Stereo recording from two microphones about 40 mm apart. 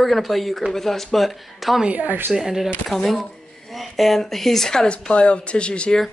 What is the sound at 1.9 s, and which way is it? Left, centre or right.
Speech, right.